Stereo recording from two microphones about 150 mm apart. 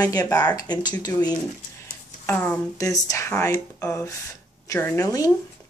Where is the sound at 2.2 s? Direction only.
10° left (ahead or behind).